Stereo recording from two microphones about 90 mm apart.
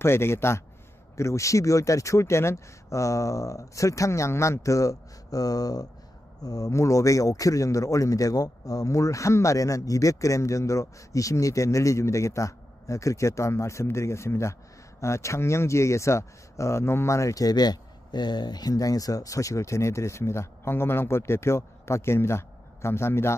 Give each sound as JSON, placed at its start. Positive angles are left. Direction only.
{"t": 0.0, "sound": "a man's voice", "side_deg": 30}